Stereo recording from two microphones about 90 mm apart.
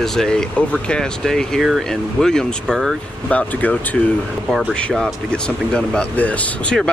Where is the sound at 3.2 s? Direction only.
15° left (ahead or behind).